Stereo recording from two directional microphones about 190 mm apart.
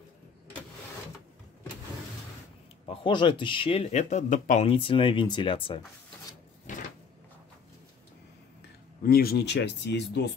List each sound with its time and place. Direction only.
2.9 s speech: 25° left (ahead or behind); by 4.6 s 40° left (ahead or behind)
4.6 s speech: 30° left (ahead or behind)
6.7 s cupboard open or close: 40° left (ahead or behind)
9.0 s speech: 55° left (ahead or behind)